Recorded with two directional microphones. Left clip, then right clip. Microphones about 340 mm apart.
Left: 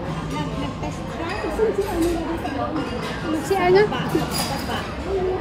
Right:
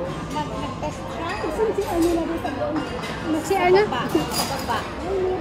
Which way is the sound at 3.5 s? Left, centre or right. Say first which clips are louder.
Left 1 dB; centre.